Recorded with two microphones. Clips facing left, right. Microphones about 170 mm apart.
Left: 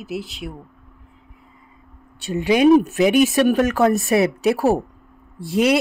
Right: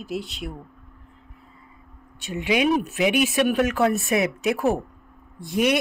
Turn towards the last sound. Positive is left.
turn(degrees=30)  # may be behind; listen again after turning